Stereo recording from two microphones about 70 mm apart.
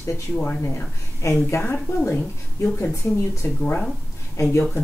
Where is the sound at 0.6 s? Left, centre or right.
Left.